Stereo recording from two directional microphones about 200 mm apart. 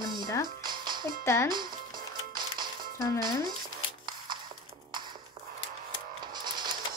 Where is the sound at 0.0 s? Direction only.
20° right (ahead or behind).